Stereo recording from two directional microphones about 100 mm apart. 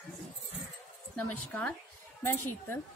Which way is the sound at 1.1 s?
15° left (ahead or behind).